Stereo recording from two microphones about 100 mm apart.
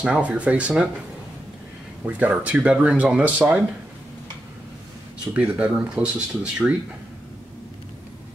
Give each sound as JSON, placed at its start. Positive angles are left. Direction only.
{"t": 0.0, "sound": "speech", "side_deg": -10}
{"t": 2.0, "sound": "speech", "side_deg": -15}
{"t": 5.3, "sound": "speech", "side_deg": -10}